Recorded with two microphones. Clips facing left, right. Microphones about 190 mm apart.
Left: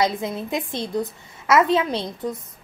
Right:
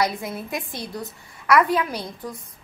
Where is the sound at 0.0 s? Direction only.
20° left (ahead or behind).